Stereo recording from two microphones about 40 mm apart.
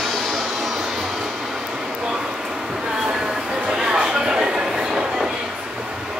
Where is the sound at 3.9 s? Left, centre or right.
Centre.